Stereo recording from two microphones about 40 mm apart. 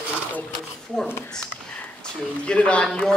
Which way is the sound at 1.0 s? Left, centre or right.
Left.